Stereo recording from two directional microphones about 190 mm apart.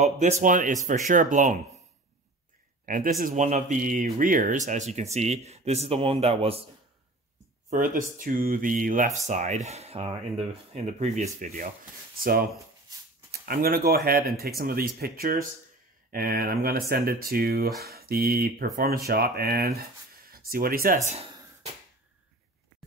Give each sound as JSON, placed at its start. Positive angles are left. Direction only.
{"t": 0.0, "sound": "speech", "side_deg": -40}
{"t": 2.8, "sound": "speech", "side_deg": -45}
{"t": 7.7, "sound": "speech", "side_deg": -45}